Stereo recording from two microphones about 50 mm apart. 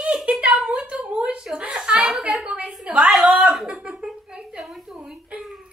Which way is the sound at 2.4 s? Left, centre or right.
Centre.